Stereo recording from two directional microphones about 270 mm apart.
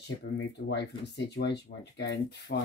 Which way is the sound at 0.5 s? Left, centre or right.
Left.